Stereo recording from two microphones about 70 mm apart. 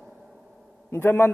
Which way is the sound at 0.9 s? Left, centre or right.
Left.